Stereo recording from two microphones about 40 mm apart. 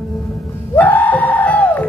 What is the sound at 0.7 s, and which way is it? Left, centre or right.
Music, left.